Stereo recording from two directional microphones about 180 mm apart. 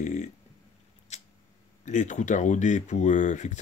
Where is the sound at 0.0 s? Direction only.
40° left (ahead or behind).